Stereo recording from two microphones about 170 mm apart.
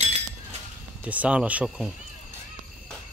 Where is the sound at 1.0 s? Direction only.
10° right (ahead or behind).